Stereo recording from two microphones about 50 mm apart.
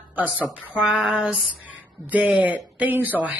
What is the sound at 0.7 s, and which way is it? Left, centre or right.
Speech, centre.